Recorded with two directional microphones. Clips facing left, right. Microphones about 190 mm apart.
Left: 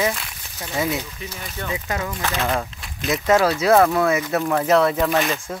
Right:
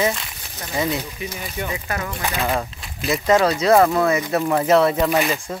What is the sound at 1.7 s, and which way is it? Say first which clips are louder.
Speech: left 5 dB; 15° left (ahead or behind).